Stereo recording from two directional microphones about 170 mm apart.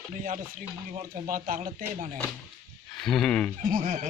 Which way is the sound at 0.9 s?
50° right (ahead or behind).